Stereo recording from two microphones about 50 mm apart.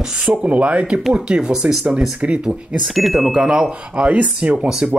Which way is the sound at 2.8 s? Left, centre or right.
Centre.